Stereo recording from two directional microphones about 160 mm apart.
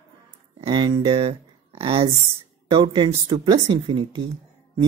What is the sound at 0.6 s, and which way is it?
Speech, 30° right (ahead or behind).